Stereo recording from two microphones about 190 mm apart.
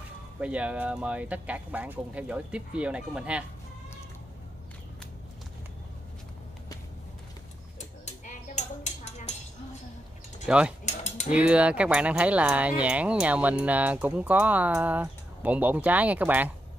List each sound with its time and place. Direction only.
0.4 s speech: 5° right (ahead or behind)
10.4 s speech: 5° right (ahead or behind)
10.9 s a sound: 35° left (ahead or behind)
11.3 s speech: 5° right (ahead or behind)